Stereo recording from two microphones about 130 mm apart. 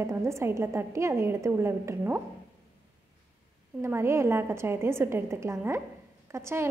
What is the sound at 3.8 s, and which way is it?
A woman's voice, 20° right (ahead or behind).